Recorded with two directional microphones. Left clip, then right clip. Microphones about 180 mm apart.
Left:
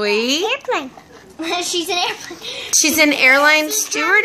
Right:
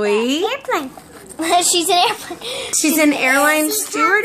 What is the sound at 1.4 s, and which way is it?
A child's voice, 40° right (ahead or behind).